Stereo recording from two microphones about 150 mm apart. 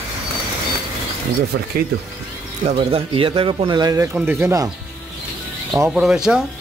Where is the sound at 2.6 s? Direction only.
40° right (ahead or behind); by 4.6 s 15° right (ahead or behind).